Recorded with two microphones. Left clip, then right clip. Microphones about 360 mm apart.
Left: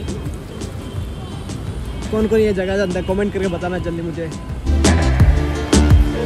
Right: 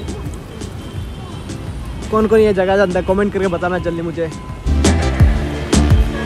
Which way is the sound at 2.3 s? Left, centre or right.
Centre.